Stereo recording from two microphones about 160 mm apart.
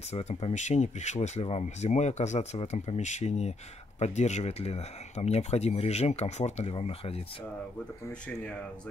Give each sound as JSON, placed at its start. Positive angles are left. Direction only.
{"t": 0.1, "sound": "speech", "side_deg": 45}